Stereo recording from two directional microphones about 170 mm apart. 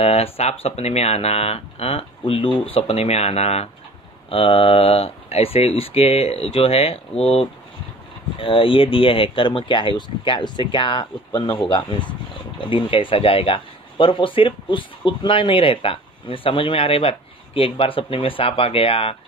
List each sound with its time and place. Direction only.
0.0 s speech: 40° left (ahead or behind)